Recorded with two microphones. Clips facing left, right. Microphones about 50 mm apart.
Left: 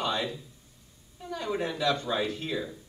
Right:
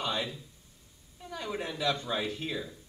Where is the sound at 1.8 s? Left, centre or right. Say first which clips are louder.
Left 2 dB; centre.